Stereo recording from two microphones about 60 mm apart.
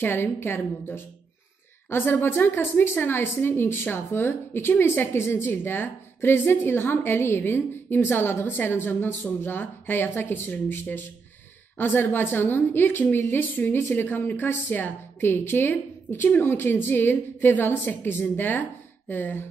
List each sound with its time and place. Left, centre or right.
0.0 s a woman's voice: left